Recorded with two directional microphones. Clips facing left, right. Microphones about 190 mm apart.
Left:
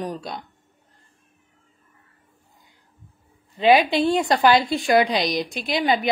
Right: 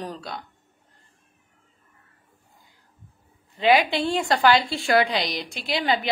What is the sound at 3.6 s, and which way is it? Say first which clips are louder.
A woman's voice: left 3 dB; 20° left (ahead or behind).